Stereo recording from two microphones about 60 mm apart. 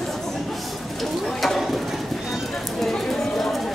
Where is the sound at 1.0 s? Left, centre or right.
Centre.